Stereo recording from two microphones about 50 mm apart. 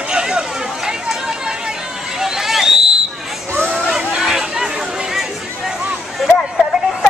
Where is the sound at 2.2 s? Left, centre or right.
Centre.